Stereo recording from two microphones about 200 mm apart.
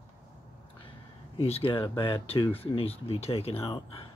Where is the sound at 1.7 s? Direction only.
25° left (ahead or behind).